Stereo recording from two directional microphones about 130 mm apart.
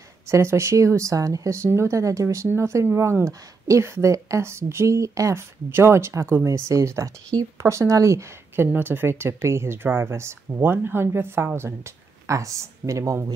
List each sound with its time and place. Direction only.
0.3 s speech: 20° right (ahead or behind)